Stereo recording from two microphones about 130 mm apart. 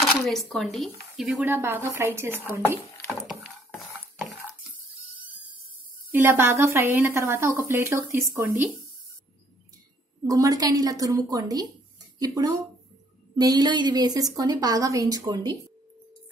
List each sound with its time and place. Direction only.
0.0 s speech: 5° left (ahead or behind)
1.4 s speech: 15° right (ahead or behind)
3.1 s a sound: centre (ahead or behind)
6.1 s a woman's voice: 15° right (ahead or behind)
10.2 s a woman's voice: 25° right (ahead or behind)